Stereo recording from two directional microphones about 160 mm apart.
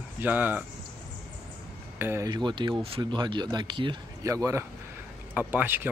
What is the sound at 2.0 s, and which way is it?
Speech, 15° right (ahead or behind).